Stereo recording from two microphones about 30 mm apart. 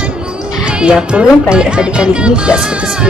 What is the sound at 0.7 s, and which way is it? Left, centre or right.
Speech, right.